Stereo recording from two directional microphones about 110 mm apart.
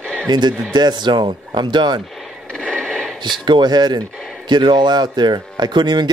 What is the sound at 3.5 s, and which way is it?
A man's voice, 40° right (ahead or behind).